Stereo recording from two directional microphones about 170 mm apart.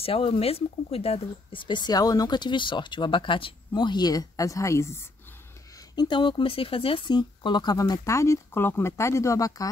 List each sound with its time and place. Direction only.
0.0 s speech: 35° left (ahead or behind); by 5.0 s 15° left (ahead or behind)
5.9 s speech: 30° left (ahead or behind)